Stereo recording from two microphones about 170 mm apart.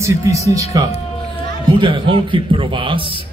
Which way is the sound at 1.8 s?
30° right (ahead or behind).